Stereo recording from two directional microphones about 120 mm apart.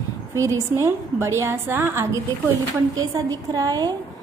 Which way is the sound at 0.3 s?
25° right (ahead or behind).